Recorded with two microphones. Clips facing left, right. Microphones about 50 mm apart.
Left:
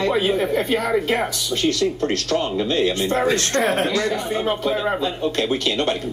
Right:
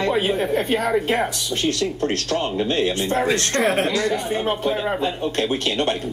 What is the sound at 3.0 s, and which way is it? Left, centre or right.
Speech, left.